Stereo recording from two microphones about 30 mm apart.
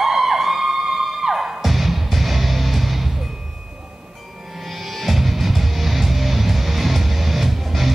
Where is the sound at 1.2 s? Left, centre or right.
Centre.